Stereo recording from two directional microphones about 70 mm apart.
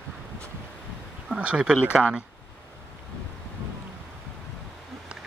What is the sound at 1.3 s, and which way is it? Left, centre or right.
Speech, centre.